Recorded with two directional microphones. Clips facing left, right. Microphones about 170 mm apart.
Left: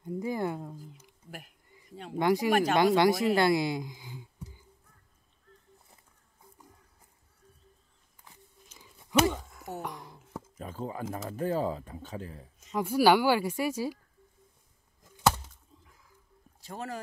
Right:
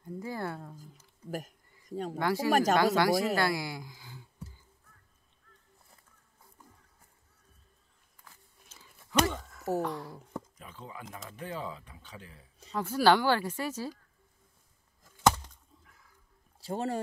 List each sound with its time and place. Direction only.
0.0 s speech: 15° left (ahead or behind)
1.9 s speech: 40° right (ahead or behind)
2.1 s speech: 20° left (ahead or behind)
2.5 s speech: 40° right (ahead or behind)
2.8 s speech: 20° left (ahead or behind)
3.3 s a sound: 20° left (ahead or behind)
8.2 s a sound: 15° left (ahead or behind)
9.8 s speech: 15° left (ahead or behind)
10.6 s speech: 45° left (ahead or behind)
12.7 s speech: 10° left (ahead or behind)
16.5 s speech: 30° right (ahead or behind)